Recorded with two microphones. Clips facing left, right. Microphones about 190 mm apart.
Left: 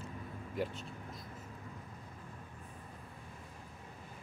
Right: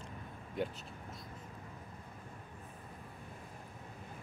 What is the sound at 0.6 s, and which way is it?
Speech, centre (ahead or behind).